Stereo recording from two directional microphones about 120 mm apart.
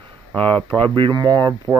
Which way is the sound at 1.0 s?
35° right (ahead or behind).